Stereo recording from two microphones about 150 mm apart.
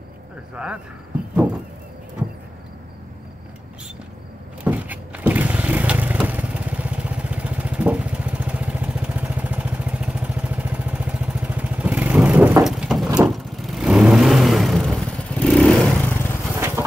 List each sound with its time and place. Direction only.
0.6 s speech: 5° right (ahead or behind)
4.6 s vehicle: 10° right (ahead or behind)
12.6 s a sound: centre (ahead or behind)
13.2 s vehicle: centre (ahead or behind)
16.5 s insect: 15° right (ahead or behind)